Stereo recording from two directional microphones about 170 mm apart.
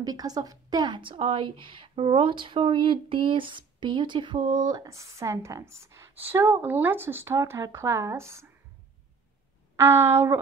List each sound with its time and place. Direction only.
0.0 s a woman's voice: 20° right (ahead or behind)
9.8 s speech: 15° right (ahead or behind)